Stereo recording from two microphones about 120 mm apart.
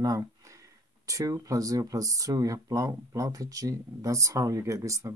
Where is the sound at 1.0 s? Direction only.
30° right (ahead or behind).